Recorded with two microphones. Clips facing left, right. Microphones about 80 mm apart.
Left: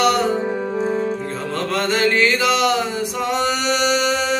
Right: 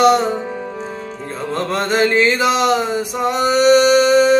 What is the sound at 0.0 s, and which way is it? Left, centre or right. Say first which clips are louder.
Music: right 4 dB; right.